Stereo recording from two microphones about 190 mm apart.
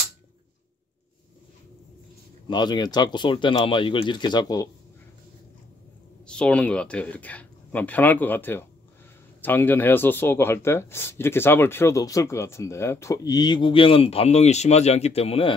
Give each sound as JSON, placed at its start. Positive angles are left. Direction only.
{"t": 2.4, "sound": "speech", "side_deg": 25}
{"t": 6.2, "sound": "speech", "side_deg": 5}